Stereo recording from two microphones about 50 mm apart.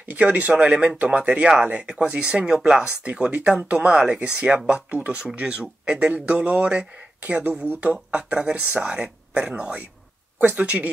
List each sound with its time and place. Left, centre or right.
0.1 s speech: right
0.7 s speech: centre